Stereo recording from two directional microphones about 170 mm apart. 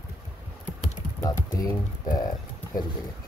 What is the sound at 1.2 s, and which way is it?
Speech, 20° left (ahead or behind).